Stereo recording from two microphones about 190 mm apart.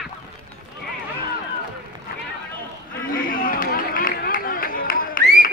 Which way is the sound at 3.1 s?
50° left (ahead or behind).